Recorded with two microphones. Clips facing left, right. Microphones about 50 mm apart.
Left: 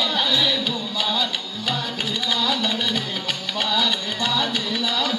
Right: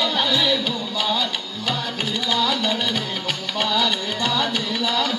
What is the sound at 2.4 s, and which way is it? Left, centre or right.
Music, right.